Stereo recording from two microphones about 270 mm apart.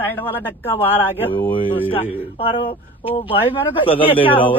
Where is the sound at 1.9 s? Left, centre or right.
Left.